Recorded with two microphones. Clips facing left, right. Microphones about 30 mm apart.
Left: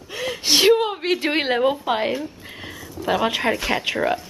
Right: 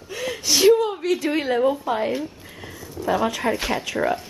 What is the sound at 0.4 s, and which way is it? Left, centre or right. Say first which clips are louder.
Whimper: even; left.